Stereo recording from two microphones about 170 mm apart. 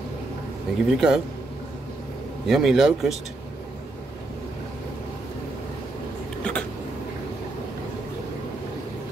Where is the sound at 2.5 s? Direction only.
Centre (ahead or behind).